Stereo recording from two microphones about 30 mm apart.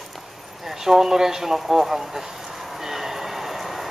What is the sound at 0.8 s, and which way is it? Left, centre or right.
Speech, centre.